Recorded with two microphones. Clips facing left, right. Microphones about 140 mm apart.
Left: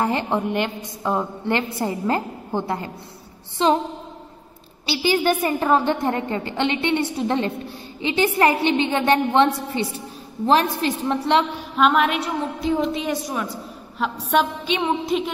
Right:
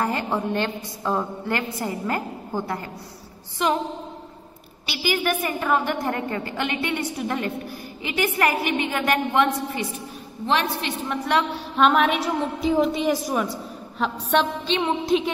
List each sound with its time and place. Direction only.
0.0 s a woman's voice: 20° left (ahead or behind)
4.8 s a woman's voice: 30° left (ahead or behind)
11.7 s a woman's voice: centre (ahead or behind)